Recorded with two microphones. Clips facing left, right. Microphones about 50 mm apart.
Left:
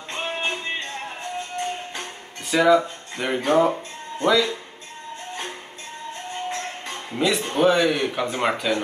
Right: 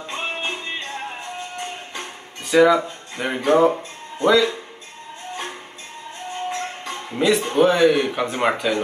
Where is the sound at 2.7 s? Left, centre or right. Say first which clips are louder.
Left 2 dB; centre.